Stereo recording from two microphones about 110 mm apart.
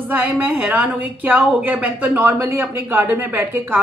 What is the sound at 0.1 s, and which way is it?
A woman's voice, 15° right (ahead or behind).